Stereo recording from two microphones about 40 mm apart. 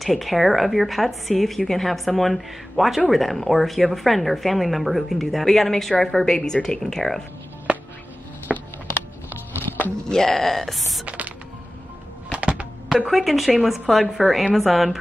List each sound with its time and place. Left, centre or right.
0.0 s a woman's voice: centre
8.5 s a sound: centre
10.0 s speech: centre
11.1 s music: right
12.4 s a sound: right
12.9 s a woman's voice: centre